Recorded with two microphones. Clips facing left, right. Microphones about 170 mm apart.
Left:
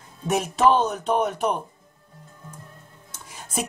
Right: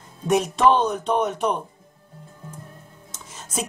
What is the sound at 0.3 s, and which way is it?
Speech, 5° left (ahead or behind).